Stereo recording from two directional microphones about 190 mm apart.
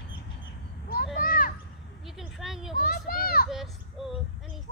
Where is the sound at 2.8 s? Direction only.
50° left (ahead or behind).